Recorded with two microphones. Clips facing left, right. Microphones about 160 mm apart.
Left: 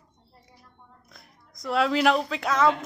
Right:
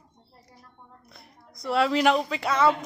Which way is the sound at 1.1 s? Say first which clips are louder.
Right 3 dB; centre (ahead or behind).